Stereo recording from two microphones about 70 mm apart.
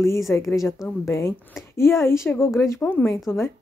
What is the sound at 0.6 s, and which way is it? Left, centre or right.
A woman's voice, left.